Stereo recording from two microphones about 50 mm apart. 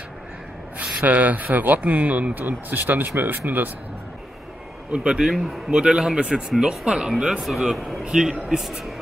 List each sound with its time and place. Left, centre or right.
0.7 s speech: right
4.9 s speech: centre
8.1 s a man's voice: centre